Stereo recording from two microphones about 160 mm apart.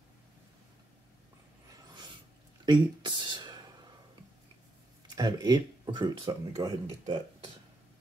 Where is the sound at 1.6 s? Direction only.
30° right (ahead or behind).